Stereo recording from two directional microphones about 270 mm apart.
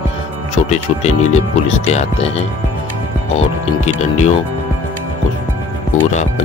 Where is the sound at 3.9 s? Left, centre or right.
Left.